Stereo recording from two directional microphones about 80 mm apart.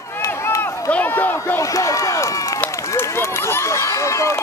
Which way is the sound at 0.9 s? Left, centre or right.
Left.